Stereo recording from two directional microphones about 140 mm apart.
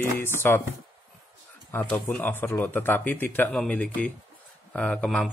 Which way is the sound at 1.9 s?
15° left (ahead or behind).